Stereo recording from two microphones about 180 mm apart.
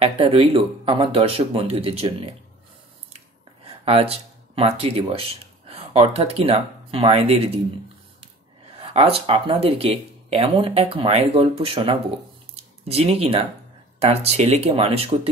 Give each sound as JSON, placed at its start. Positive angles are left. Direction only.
{"t": 0.0, "sound": "speech", "side_deg": -30}
{"t": 3.8, "sound": "speech", "side_deg": -35}
{"t": 8.7, "sound": "speech", "side_deg": -35}